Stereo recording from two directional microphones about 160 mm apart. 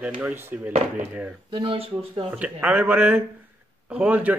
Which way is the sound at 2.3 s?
10° right (ahead or behind).